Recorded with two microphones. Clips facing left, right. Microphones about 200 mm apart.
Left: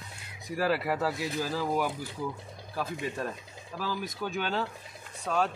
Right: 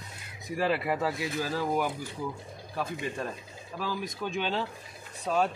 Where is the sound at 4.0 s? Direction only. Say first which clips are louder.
Even; 5° left (ahead or behind).